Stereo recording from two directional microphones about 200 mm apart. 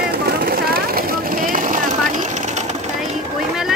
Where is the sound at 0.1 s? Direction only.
50° right (ahead or behind).